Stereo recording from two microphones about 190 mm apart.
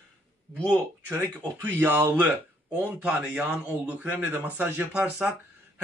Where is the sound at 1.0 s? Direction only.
10° right (ahead or behind).